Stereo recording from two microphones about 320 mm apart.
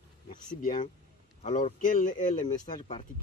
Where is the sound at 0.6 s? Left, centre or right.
Left.